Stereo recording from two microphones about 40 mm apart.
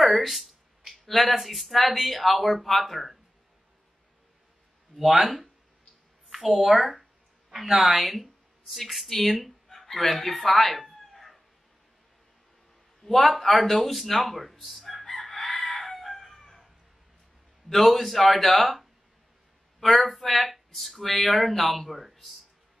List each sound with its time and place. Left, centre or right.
0.0 s speech: centre
4.9 s a woman's voice: centre
10.5 s cat: centre
13.0 s speech: centre
15.2 s chicken: centre
15.5 s chicken: left
15.8 s crowing: centre
17.6 s speech: centre